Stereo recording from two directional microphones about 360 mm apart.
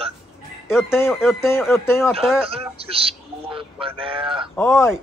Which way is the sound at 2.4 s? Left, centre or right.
Centre.